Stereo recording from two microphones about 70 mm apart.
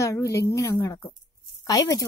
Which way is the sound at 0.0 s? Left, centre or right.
Left.